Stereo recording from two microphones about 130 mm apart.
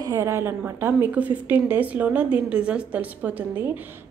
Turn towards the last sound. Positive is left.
turn(degrees=-10)  # may be behind; listen again after turning